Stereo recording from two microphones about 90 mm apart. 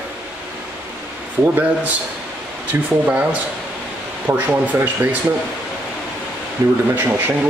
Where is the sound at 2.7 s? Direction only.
20° right (ahead or behind).